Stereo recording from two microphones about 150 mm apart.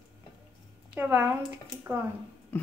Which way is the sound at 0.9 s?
15° right (ahead or behind).